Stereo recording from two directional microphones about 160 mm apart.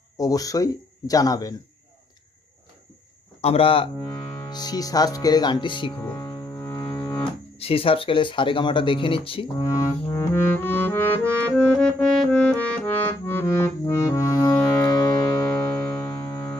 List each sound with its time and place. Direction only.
0.2 s speech: 20° left (ahead or behind)
3.3 s speech: 40° left (ahead or behind)
4.1 s music: 15° left (ahead or behind)
4.5 s speech: 25° left (ahead or behind)
6.0 s double bass: 20° left (ahead or behind)
7.5 s speech: 35° left (ahead or behind)
9.6 s music: 20° left (ahead or behind)
11.5 s accordion: 5° left (ahead or behind); by 15.5 s 25° left (ahead or behind)
16.1 s a sound: 15° left (ahead or behind)